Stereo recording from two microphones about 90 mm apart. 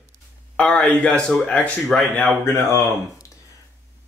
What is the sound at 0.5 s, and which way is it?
Speech, 10° left (ahead or behind).